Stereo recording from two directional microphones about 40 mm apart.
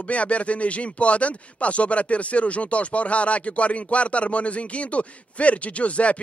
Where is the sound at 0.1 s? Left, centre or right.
Left.